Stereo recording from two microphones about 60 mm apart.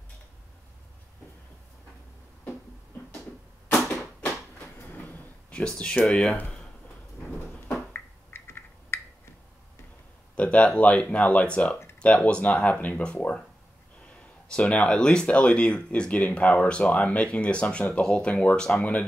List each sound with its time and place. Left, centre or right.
4.7 s train: left
5.5 s speech: centre
7.6 s a sound: left
10.3 s a sound: left
10.8 s speech: left
18.6 s speech: centre